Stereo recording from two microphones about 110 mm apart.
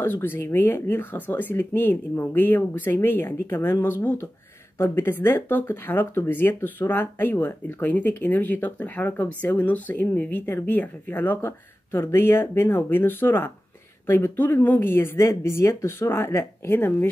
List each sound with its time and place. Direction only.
0.0 s speech: 20° left (ahead or behind)